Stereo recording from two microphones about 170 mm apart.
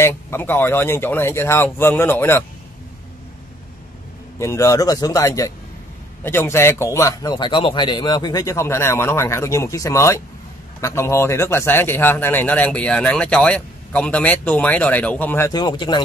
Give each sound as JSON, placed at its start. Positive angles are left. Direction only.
{"t": 0.0, "sound": "speech", "side_deg": 15}
{"t": 4.4, "sound": "speech", "side_deg": 15}